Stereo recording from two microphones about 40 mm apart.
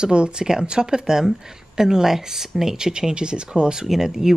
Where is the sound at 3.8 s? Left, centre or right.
Centre.